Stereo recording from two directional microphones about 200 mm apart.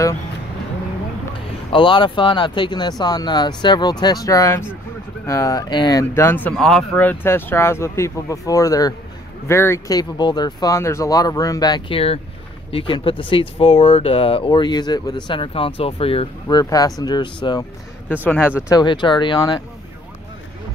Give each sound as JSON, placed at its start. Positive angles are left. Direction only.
{"t": 1.7, "sound": "speech", "side_deg": 25}
{"t": 18.0, "sound": "speech", "side_deg": 10}